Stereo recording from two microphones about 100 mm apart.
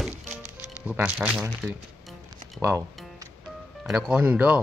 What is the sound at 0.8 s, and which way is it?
Speech, 10° right (ahead or behind).